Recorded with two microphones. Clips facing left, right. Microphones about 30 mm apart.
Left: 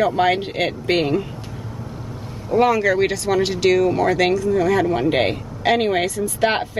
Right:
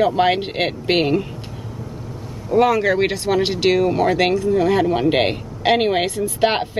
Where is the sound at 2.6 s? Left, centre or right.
Centre.